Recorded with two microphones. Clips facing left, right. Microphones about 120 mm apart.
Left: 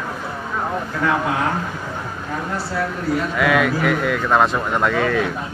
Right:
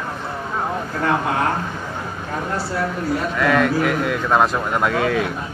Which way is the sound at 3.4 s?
5° left (ahead or behind).